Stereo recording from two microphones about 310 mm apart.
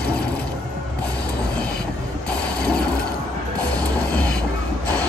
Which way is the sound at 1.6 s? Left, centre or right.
Centre.